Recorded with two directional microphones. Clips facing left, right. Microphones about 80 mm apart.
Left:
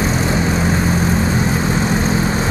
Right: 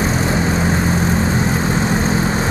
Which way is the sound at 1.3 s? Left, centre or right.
Centre.